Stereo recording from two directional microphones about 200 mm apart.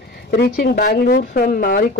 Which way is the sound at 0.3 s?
50° left (ahead or behind).